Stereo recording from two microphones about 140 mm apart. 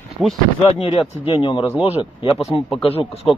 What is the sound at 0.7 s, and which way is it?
Speech, 40° left (ahead or behind).